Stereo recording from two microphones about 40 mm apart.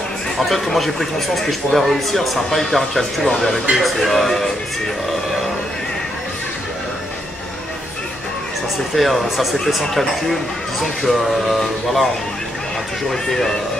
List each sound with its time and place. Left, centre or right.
0.5 s speech: centre
8.9 s speech: centre
13.1 s speech: centre